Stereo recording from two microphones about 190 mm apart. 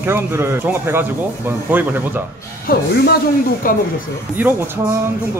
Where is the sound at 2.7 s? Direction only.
50° left (ahead or behind).